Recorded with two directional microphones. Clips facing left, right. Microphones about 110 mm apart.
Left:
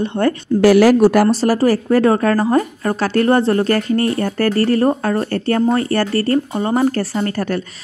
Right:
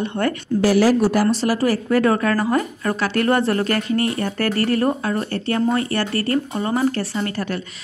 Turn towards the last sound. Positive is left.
turn(degrees=40)  # may be behind; listen again after turning